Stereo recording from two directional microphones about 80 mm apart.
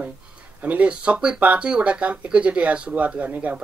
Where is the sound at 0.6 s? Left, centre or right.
Centre.